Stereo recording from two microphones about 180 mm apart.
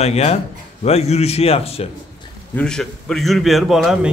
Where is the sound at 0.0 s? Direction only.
35° left (ahead or behind).